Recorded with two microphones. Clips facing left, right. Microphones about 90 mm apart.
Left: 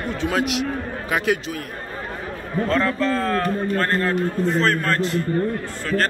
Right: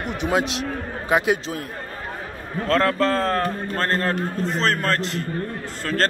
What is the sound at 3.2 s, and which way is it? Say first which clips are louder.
Speech: left 1 dB; 35° right (ahead or behind).